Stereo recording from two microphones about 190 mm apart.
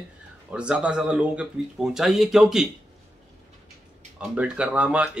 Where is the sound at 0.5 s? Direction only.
5° right (ahead or behind).